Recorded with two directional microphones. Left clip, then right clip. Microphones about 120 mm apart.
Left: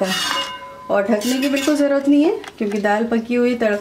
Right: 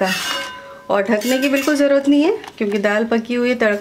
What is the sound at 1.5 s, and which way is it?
Speech, 25° right (ahead or behind).